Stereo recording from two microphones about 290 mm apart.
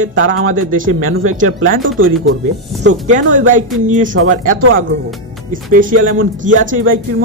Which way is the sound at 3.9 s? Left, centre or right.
Right.